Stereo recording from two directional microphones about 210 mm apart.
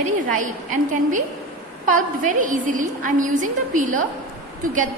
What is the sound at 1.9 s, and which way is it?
A woman's voice, 40° right (ahead or behind).